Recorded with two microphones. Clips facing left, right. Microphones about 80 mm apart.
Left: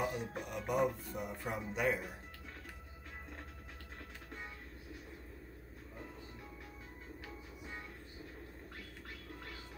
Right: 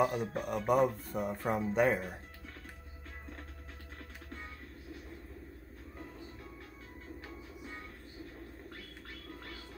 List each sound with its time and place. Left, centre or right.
0.0 s speech: right